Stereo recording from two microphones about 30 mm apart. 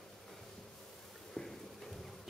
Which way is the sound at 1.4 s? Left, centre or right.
Left.